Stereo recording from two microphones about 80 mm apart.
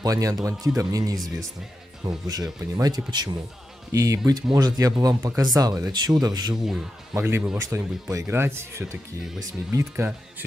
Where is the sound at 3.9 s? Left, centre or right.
Right.